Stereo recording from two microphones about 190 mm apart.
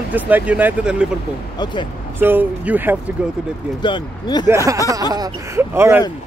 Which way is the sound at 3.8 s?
25° left (ahead or behind).